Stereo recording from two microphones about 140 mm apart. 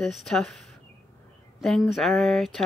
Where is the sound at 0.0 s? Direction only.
Centre (ahead or behind).